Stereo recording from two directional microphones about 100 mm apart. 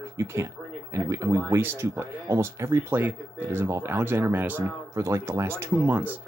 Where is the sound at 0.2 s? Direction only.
25° right (ahead or behind).